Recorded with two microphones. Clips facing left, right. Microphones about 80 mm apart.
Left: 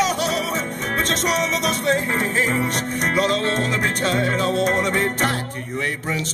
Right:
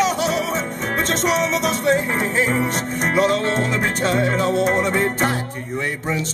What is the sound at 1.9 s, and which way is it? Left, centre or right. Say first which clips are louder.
Music: right 1 dB; centre.